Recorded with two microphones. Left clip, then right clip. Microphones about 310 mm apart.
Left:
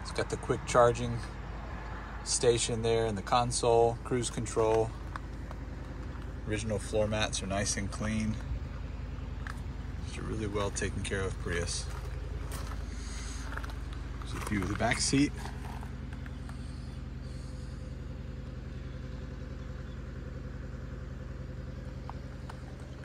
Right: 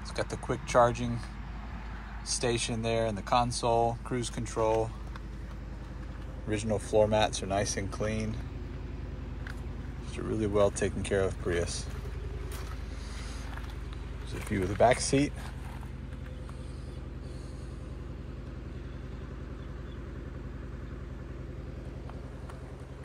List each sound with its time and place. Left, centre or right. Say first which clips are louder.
0.1 s speech: left 1 dB; centre
2.4 s speech: left 4 dB; centre
6.5 s speech: right 4 dB; centre
10.1 s speech: right 7 dB; centre
14.5 s speech: right 7 dB; centre